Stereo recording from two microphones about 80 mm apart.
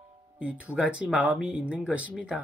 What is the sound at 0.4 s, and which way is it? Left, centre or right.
Speech, centre.